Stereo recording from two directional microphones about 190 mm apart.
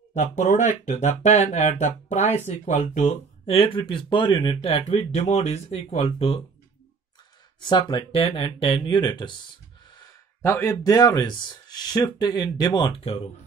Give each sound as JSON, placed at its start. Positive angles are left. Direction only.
{"t": 0.1, "sound": "speech", "side_deg": 40}
{"t": 7.6, "sound": "speech", "side_deg": 25}